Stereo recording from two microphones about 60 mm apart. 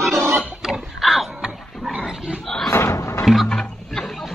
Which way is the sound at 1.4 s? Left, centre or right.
Centre.